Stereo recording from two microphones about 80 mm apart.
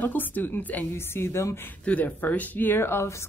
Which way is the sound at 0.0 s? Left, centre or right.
Left.